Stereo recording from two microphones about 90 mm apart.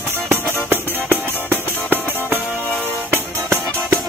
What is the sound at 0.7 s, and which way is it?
Music, 25° right (ahead or behind).